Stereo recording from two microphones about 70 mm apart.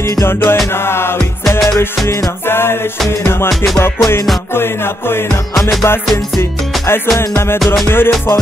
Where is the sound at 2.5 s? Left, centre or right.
Left.